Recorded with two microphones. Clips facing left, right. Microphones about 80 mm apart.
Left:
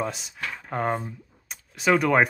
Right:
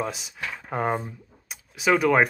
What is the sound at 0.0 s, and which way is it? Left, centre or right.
Speech, centre.